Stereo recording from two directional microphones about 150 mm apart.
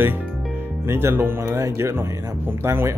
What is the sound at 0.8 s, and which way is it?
Speech, 15° right (ahead or behind).